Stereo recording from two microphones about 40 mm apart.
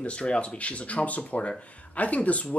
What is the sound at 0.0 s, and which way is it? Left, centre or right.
Speech, left.